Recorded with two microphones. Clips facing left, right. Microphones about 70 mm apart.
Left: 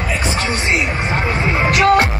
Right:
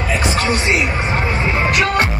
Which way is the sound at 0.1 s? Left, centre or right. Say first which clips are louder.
Right 3 dB; centre.